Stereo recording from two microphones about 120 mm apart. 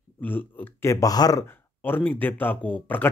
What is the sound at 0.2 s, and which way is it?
Speech, 15° left (ahead or behind).